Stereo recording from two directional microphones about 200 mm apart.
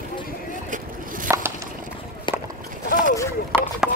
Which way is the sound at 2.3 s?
25° left (ahead or behind).